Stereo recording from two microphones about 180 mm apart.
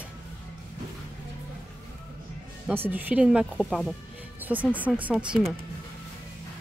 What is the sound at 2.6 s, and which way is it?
A woman's voice, 10° right (ahead or behind).